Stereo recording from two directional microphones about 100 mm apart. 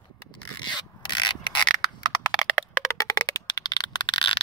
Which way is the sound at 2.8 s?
35° left (ahead or behind).